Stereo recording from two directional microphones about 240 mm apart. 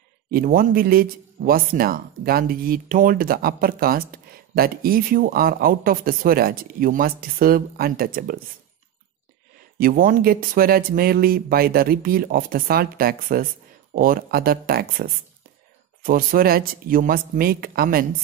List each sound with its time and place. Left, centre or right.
0.3 s speech: right
9.8 s speech: right